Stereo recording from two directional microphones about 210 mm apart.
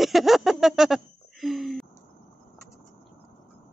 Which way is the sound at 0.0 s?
Centre (ahead or behind).